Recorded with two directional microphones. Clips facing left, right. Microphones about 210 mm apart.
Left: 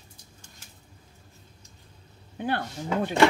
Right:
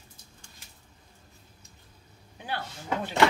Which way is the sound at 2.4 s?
55° left (ahead or behind).